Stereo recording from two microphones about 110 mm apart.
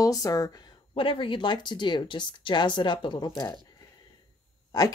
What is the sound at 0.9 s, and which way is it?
Speech, 55° left (ahead or behind).